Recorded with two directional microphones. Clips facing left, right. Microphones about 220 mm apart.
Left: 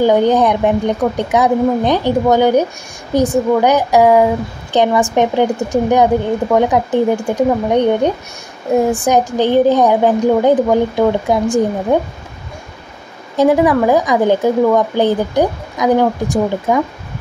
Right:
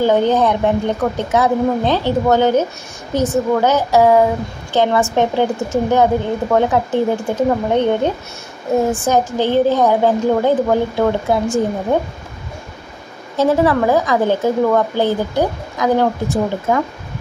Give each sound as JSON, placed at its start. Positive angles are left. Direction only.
{"t": 0.0, "sound": "a woman's voice", "side_deg": 15}
{"t": 13.4, "sound": "a woman's voice", "side_deg": 15}